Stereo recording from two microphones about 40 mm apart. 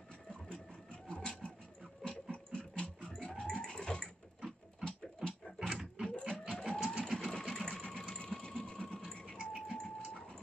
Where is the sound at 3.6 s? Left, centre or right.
Centre.